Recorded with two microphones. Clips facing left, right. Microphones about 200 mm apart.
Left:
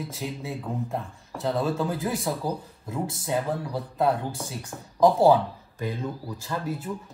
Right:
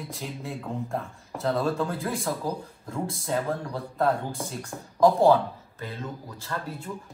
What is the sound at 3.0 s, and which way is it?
Speech, centre (ahead or behind).